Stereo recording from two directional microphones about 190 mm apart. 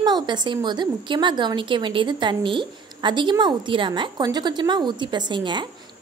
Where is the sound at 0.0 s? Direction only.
25° right (ahead or behind).